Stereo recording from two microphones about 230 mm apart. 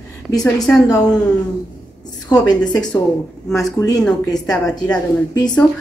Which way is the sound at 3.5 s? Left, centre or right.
Centre.